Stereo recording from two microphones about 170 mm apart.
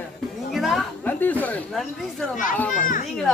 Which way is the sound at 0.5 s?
Centre (ahead or behind).